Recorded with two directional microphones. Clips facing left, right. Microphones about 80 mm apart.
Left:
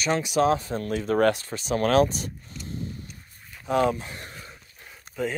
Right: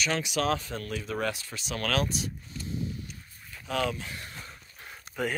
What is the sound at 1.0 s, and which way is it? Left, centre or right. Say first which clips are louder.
Speech: left 13 dB; left.